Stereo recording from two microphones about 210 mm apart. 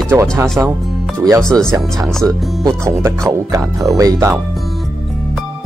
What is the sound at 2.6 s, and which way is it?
Speech, 15° right (ahead or behind).